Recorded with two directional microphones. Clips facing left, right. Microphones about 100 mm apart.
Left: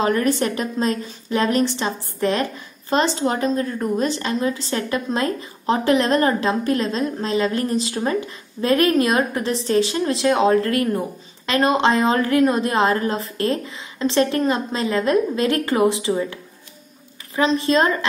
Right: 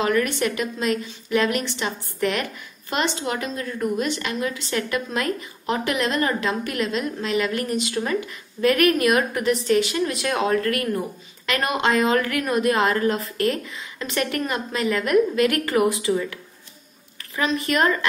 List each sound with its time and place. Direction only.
0.0 s a woman's voice: 35° left (ahead or behind)
17.4 s a woman's voice: 30° left (ahead or behind)